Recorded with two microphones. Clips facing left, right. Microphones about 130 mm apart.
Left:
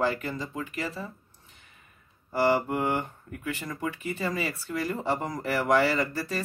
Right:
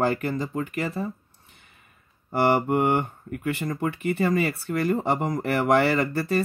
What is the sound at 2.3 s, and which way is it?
Speech, 60° right (ahead or behind).